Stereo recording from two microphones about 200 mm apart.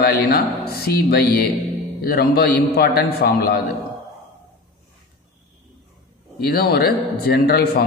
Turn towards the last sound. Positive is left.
turn(degrees=50)  # may be behind; listen again after turning